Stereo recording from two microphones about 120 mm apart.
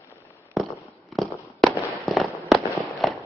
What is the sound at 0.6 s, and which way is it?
Fireworks, centre (ahead or behind).